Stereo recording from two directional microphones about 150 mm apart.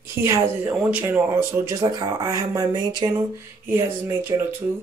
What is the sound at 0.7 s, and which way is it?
Speech, 10° right (ahead or behind).